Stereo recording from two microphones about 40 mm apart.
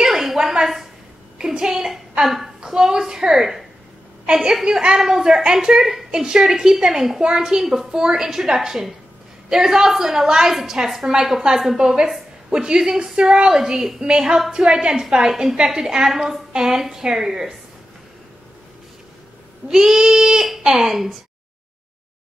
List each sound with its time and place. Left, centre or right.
0.0 s a sound: centre
1.4 s a sound: centre
1.7 s a woman's voice: centre
2.6 s a woman's voice: centre
4.6 s a woman's voice: centre
19.7 s a woman's voice: centre